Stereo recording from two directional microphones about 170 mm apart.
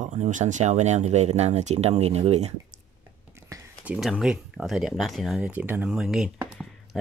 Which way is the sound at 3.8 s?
5° right (ahead or behind).